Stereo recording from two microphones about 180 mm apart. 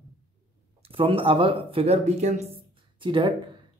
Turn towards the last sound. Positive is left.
turn(degrees=-30)  # may be behind; listen again after turning